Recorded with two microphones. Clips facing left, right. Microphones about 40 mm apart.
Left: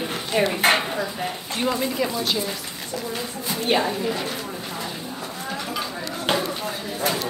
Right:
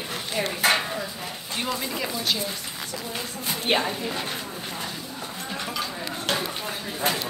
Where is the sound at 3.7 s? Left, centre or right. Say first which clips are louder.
Left 2 dB; right.